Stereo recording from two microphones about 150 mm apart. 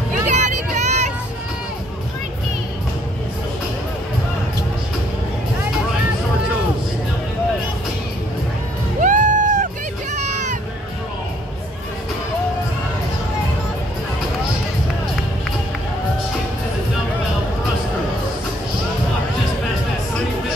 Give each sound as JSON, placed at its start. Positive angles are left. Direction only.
{"t": 0.3, "sound": "vehicle", "side_deg": -50}
{"t": 9.0, "sound": "music", "side_deg": -55}